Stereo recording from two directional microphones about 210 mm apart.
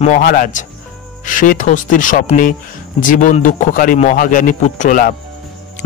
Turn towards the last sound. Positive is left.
turn(degrees=40)  # may be behind; listen again after turning